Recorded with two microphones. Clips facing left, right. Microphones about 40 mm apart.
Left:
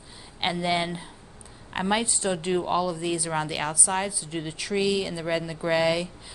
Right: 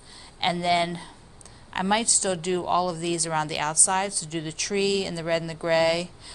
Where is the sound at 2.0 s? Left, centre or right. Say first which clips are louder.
Even; left.